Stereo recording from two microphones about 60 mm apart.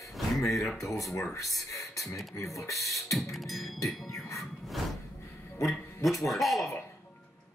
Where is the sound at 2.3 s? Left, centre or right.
Left.